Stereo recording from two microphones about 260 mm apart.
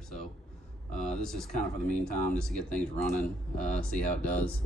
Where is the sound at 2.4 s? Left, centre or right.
Centre.